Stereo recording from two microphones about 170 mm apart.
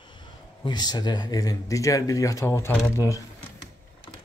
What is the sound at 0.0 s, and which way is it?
Speech, 25° left (ahead or behind).